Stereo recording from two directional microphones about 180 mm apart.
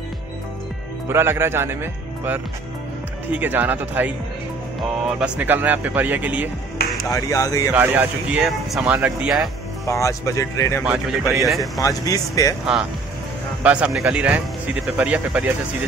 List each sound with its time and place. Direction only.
1.0 s speech: 15° right (ahead or behind)
5.2 s speech: 10° right (ahead or behind)
7.1 s speech: 20° left (ahead or behind)
7.7 s speech: 10° right (ahead or behind)
9.8 s speech: 15° left (ahead or behind)
10.8 s speech: 5° right (ahead or behind)
11.8 s speech: 20° left (ahead or behind)
13.6 s speech: 5° right (ahead or behind)